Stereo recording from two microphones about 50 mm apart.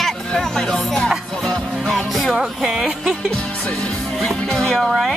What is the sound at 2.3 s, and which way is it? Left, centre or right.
Speech, centre.